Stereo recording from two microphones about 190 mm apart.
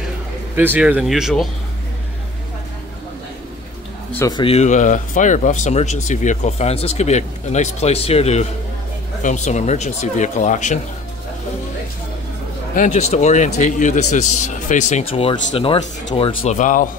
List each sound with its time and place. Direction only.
0.6 s speech: 10° right (ahead or behind)
4.3 s speech: 30° left (ahead or behind)
12.7 s speech: 40° left (ahead or behind)
16.4 s speech: 40° left (ahead or behind)